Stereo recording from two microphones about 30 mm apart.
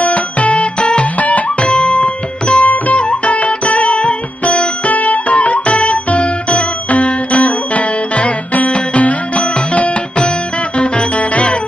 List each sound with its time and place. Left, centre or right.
0.0 s music: left
1.2 s music: left
2.6 s music: left